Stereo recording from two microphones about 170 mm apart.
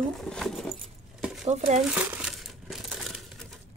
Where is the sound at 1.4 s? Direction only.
45° right (ahead or behind).